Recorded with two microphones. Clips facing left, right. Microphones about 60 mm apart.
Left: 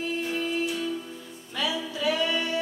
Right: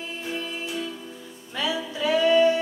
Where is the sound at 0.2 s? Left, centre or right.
Centre.